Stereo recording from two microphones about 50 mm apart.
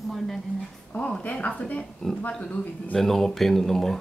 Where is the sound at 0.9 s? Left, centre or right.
Left.